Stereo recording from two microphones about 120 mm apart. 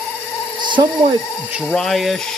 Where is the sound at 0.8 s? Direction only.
45° right (ahead or behind).